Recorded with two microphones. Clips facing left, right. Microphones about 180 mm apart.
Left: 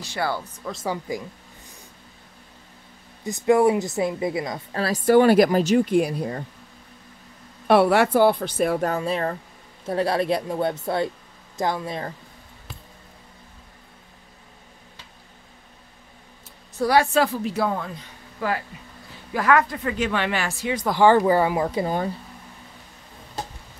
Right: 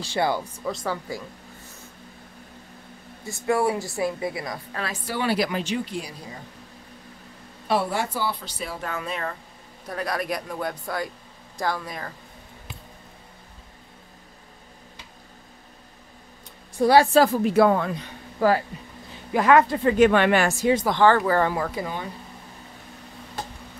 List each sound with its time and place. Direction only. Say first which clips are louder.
0.0 s speech: right 3 dB; 30° right (ahead or behind)
0.3 s speech: right 2 dB; 15° right (ahead or behind)
0.8 s speech: left 2 dB; 15° left (ahead or behind)
3.3 s a woman's voice: left 5 dB; 20° left (ahead or behind)
4.8 s a woman's voice: left 12 dB; 45° left (ahead or behind)
7.6 s a woman's voice: left 8 dB; 70° left (ahead or behind); by 8.9 s 50° left (ahead or behind)
8.9 s a woman's voice: left 6 dB; 35° left (ahead or behind)
16.8 s a woman's voice: right 3 dB; 30° right (ahead or behind)
17.4 s speech: right 6 dB; 60° right (ahead or behind)
18.4 s a woman's voice: right 6 dB; 40° right (ahead or behind)
19.3 s speech: right 3 dB; 25° right (ahead or behind)
20.0 s speech: right 8 dB; 55° right (ahead or behind)
21.3 s speech: left 3 dB; 15° left (ahead or behind)
21.8 s speech: left 7 dB; 35° left (ahead or behind)